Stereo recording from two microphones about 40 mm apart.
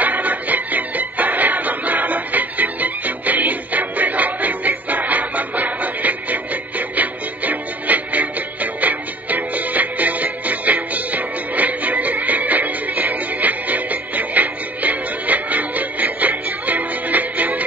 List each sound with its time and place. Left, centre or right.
0.0 s music: right